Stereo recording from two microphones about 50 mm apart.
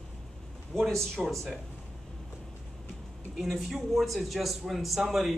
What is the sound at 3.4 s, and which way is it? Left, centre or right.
A man's voice, centre.